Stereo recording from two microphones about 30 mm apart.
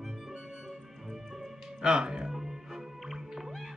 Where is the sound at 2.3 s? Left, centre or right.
Centre.